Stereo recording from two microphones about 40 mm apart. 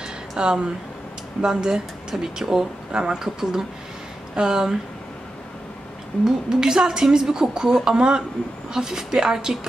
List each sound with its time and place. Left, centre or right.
0.4 s a woman's voice: right
6.2 s a woman's voice: centre